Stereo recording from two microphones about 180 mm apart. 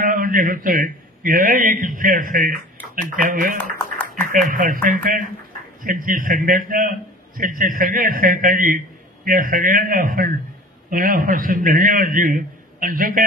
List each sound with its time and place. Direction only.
0.0 s a man's voice: 50° right (ahead or behind)
3.7 s a sound: 10° left (ahead or behind)
4.5 s a man's voice: 50° right (ahead or behind)